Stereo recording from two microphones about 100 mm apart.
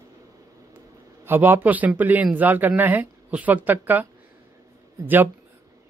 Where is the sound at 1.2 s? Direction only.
20° right (ahead or behind).